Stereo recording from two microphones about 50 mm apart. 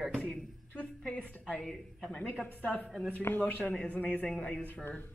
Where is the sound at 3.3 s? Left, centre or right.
Left.